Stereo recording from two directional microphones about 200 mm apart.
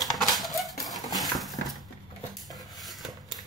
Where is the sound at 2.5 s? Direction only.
Centre (ahead or behind).